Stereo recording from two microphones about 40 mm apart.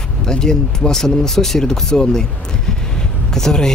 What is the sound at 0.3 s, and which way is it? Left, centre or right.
Speech, centre.